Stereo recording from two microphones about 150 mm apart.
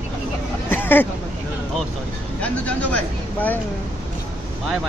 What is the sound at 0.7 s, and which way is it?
Hubbub, 15° left (ahead or behind).